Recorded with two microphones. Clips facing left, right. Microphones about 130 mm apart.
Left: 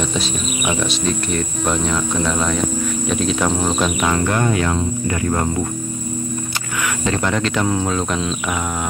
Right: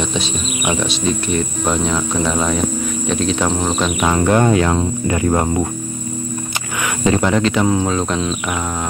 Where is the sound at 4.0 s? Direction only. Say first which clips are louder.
Right 4 dB; 20° right (ahead or behind); by 4.8 s 35° right (ahead or behind).